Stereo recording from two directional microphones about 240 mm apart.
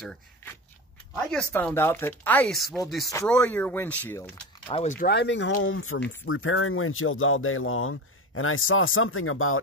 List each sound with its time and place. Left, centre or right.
0.0 s speech: centre
3.1 s speech: centre
4.6 s speech: left
4.9 s speech: left